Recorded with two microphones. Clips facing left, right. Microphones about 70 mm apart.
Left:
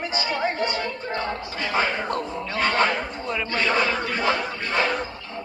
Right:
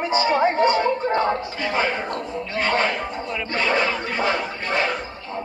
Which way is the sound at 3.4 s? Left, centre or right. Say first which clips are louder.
Right 1 dB; right.